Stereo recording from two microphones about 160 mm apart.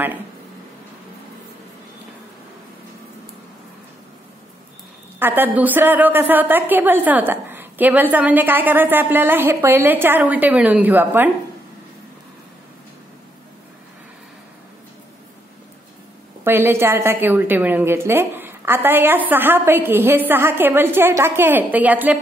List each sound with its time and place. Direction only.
5.2 s a woman's voice: 10° right (ahead or behind)
16.4 s a woman's voice: 15° right (ahead or behind)